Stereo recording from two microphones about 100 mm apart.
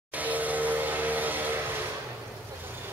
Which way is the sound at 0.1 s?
15° right (ahead or behind).